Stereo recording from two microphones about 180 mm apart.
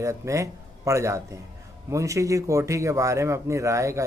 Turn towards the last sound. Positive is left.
turn(degrees=-15)  # may be behind; listen again after turning